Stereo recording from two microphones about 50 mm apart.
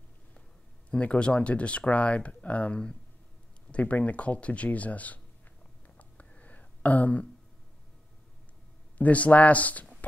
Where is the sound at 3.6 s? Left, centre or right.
Left.